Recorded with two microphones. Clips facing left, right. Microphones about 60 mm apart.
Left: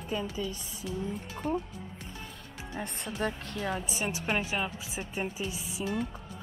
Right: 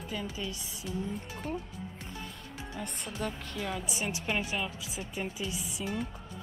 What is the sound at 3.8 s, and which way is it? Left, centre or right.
A woman's voice, left.